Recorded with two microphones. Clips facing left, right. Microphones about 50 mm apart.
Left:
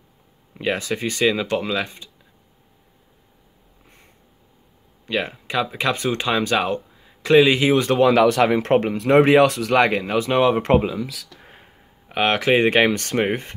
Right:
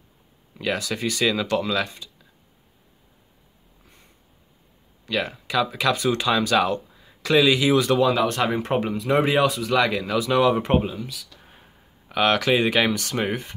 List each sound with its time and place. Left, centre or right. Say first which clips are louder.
0.6 s speech: left 2 dB; left
5.0 s speech: left 2 dB; left
8.0 s speech: left 5 dB; left
9.8 s speech: left 4 dB; left
10.6 s speech: left 4 dB; left
11.2 s a sound: left 4 dB; left
12.1 s speech: left 1 dB; left